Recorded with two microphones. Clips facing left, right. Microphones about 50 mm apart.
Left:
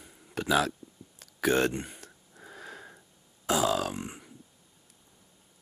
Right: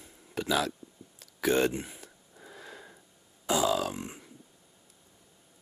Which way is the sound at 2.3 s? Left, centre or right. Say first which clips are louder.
Left 2 dB; centre.